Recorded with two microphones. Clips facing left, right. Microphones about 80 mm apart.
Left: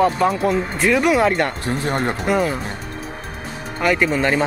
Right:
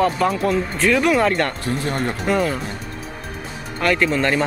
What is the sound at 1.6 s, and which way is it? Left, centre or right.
Speech, left.